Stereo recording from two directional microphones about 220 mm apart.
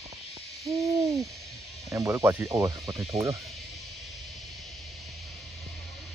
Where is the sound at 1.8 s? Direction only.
15° right (ahead or behind).